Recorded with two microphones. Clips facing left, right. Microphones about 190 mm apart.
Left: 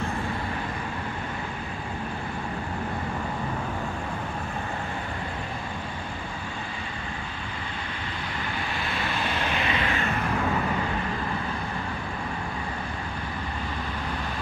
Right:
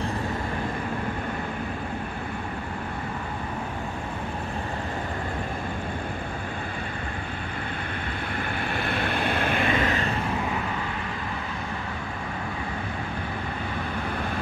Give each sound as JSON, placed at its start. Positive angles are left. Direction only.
{"t": 8.7, "sound": "vehicle", "side_deg": -55}